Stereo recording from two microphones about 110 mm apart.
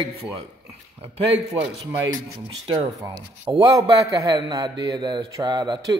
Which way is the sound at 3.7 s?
35° right (ahead or behind).